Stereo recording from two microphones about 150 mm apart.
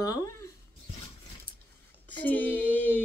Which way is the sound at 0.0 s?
25° left (ahead or behind).